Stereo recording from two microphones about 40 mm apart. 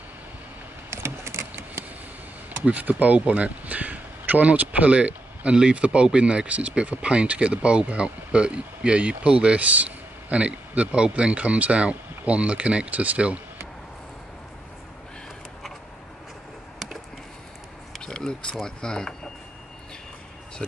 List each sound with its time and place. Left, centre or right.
0.8 s a sound: right
2.6 s speech: right
5.6 s speech: right
9.6 s speech: right
18.0 s a sound: left
18.6 s speech: centre